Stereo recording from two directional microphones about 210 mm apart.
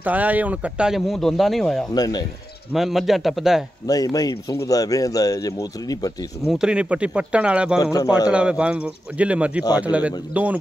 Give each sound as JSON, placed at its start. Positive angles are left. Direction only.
{"t": 0.0, "sound": "speech", "side_deg": -5}
{"t": 2.0, "sound": "speech", "side_deg": 20}
{"t": 2.7, "sound": "speech", "side_deg": 0}
{"t": 3.8, "sound": "speech", "side_deg": 15}
{"t": 6.5, "sound": "speech", "side_deg": -5}
{"t": 7.8, "sound": "speech", "side_deg": 15}
{"t": 8.3, "sound": "speech", "side_deg": -5}